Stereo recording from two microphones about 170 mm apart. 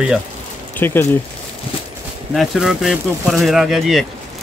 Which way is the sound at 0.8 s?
10° left (ahead or behind).